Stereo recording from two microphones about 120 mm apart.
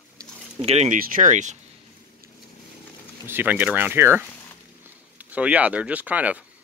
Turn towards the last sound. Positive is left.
turn(degrees=-10)  # may be behind; listen again after turning